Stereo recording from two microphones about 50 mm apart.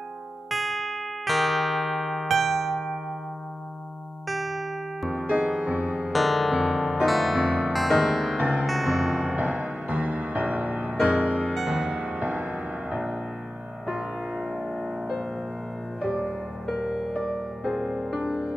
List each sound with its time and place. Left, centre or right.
0.5 s music: centre
4.3 s music: centre
5.1 s music: centre
6.1 s music: centre
6.8 s music: centre
7.1 s music: centre
8.4 s music: centre
8.6 s music: centre
9.4 s music: right
11.5 s music: centre
11.9 s music: right
14.3 s music: centre
16.3 s music: centre